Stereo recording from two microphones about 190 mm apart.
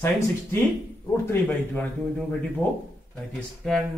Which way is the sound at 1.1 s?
10° left (ahead or behind).